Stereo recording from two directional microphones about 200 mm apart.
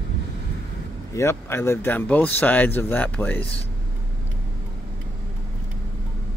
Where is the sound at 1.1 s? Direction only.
15° left (ahead or behind).